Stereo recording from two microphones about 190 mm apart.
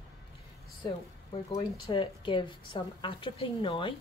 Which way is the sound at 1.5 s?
25° left (ahead or behind).